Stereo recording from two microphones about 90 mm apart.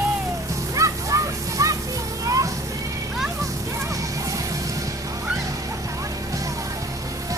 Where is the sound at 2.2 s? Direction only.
40° right (ahead or behind).